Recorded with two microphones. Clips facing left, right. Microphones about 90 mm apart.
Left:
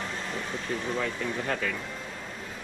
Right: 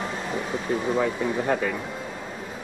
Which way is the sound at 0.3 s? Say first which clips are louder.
Right 8 dB; 10° right (ahead or behind).